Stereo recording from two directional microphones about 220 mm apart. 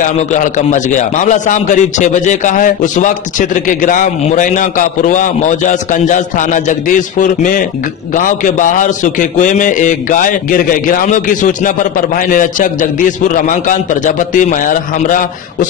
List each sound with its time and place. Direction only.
0.3 s a man's voice: 35° left (ahead or behind)